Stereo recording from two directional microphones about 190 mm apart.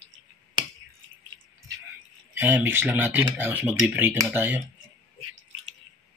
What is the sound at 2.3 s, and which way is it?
Speech, 10° right (ahead or behind).